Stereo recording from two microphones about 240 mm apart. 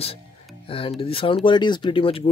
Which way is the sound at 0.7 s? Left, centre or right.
Left.